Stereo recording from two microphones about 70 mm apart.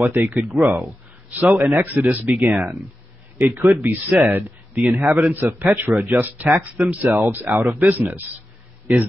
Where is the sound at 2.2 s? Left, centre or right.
Centre.